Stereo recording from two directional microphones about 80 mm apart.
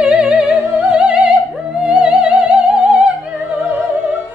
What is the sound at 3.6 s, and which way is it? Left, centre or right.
Opera, centre.